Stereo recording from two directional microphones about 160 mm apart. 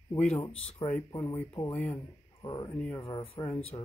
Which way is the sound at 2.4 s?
25° left (ahead or behind).